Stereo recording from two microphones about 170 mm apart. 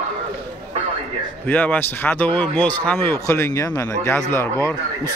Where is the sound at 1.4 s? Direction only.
10° left (ahead or behind).